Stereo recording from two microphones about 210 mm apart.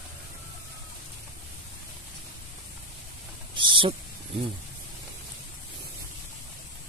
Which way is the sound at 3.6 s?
25° right (ahead or behind).